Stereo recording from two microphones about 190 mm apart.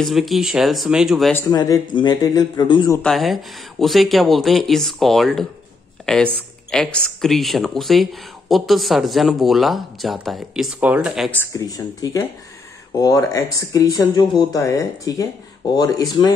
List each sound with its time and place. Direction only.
0.0 s speech: centre (ahead or behind)
1.3 s a man's voice: 20° left (ahead or behind)
3.0 s speech: centre (ahead or behind)
11.2 s a man's voice: 15° left (ahead or behind)